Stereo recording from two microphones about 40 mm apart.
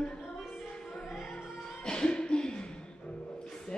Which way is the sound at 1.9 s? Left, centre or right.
Left.